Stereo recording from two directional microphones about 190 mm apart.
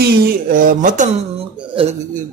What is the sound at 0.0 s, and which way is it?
Speech, 45° right (ahead or behind).